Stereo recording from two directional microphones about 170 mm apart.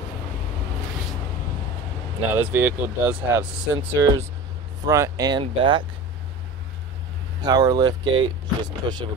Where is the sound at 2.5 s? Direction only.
10° right (ahead or behind); by 5.8 s 30° right (ahead or behind).